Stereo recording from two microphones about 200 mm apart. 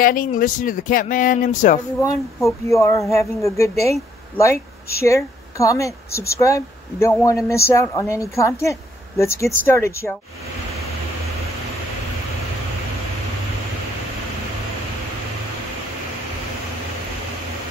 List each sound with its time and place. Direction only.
0.0 s speech: 45° left (ahead or behind)
2.0 s speech: 15° left (ahead or behind)
5.0 s speech: 15° left (ahead or behind)